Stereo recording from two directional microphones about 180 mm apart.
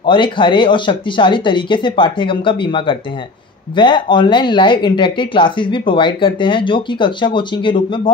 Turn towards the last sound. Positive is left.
turn(degrees=25)  # may be behind; listen again after turning